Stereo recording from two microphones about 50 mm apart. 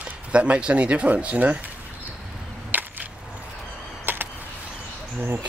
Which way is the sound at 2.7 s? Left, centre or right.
Right.